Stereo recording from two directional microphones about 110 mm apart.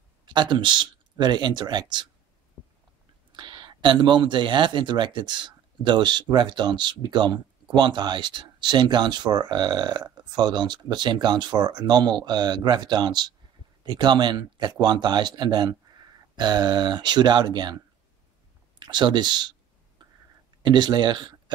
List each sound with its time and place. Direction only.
0.2 s speech: 45° right (ahead or behind)
3.3 s speech: 45° right (ahead or behind)
18.8 s speech: 45° right (ahead or behind)
20.6 s speech: 45° right (ahead or behind)